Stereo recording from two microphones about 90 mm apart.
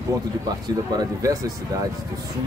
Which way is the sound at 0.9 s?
40° right (ahead or behind).